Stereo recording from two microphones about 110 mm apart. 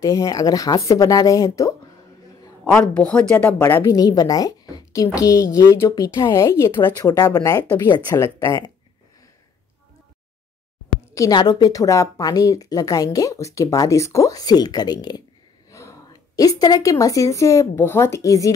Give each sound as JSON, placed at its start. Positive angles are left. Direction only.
{"t": 0.0, "sound": "speech", "side_deg": 30}
{"t": 3.1, "sound": "speech", "side_deg": 10}
{"t": 3.4, "sound": "speech", "side_deg": 20}
{"t": 3.8, "sound": "speech", "side_deg": 35}
{"t": 7.0, "sound": "speech", "side_deg": 35}
{"t": 11.1, "sound": "speech", "side_deg": 35}
{"t": 15.7, "sound": "a sound", "side_deg": 30}
{"t": 16.9, "sound": "speech", "side_deg": 30}